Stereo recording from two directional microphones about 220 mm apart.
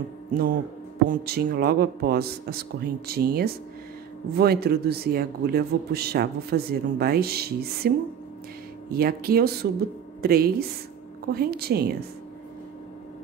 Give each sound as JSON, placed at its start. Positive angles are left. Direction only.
{"t": 0.3, "sound": "a man's voice", "side_deg": -45}
{"t": 8.9, "sound": "a man's voice", "side_deg": -45}